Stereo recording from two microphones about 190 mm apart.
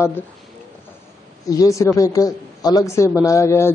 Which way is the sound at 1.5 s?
15° left (ahead or behind).